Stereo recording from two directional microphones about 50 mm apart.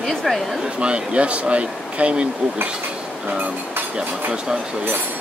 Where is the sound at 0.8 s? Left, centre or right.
Right.